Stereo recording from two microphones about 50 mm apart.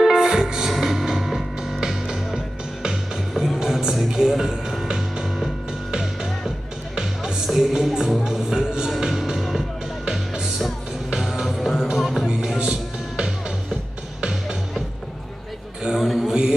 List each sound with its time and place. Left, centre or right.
0.0 s music: centre
7.0 s music: centre
11.1 s music: centre
12.3 s music: centre
15.8 s a sound: centre
16.1 s mantra: centre